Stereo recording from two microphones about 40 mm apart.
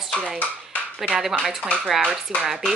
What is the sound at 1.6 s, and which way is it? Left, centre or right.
Speech, left.